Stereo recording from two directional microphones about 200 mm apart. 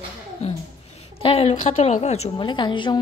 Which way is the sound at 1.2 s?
30° left (ahead or behind).